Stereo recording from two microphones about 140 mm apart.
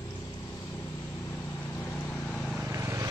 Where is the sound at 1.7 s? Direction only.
15° left (ahead or behind).